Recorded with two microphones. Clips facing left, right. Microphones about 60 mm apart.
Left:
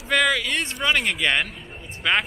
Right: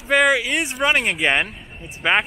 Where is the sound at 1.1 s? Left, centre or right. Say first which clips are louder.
Right 3 dB; right.